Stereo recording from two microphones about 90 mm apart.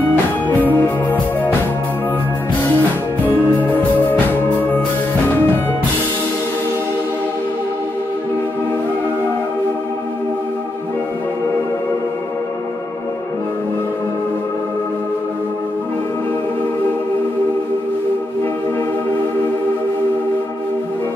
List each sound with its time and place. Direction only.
0.7 s music: 20° left (ahead or behind)
3.3 s music: 20° left (ahead or behind)